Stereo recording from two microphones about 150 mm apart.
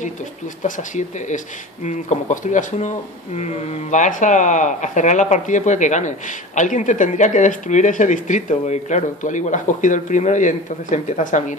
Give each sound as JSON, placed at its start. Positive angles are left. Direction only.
{"t": 0.6, "sound": "speech", "side_deg": 55}